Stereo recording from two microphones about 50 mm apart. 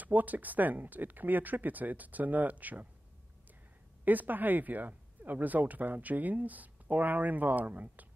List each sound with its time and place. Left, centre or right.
0.0 s speech: right
4.0 s speech: right